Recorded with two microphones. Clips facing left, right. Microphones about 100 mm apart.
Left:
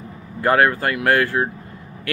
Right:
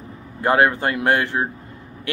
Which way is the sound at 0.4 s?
20° right (ahead or behind).